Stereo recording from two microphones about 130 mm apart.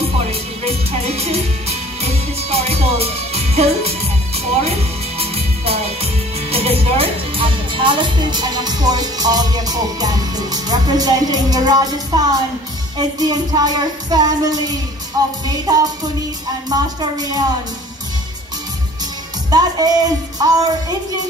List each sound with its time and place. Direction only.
0.3 s music: 55° right (ahead or behind)
5.2 s music: 50° right (ahead or behind)
6.5 s speech: 50° right (ahead or behind); by 12.3 s 30° right (ahead or behind)
12.9 s music: 30° right (ahead or behind)
19.5 s music: 30° right (ahead or behind)